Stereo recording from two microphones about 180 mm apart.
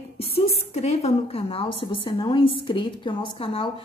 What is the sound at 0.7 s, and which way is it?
A woman's voice, 35° left (ahead or behind).